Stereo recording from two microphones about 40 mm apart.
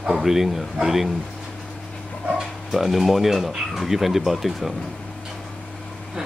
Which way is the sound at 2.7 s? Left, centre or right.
Centre.